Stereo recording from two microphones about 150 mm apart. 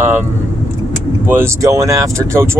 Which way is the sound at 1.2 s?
15° right (ahead or behind).